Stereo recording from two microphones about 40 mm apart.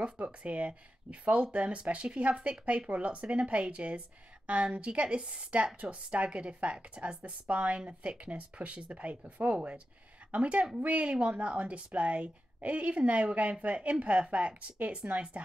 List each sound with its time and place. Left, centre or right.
0.0 s a woman's voice: right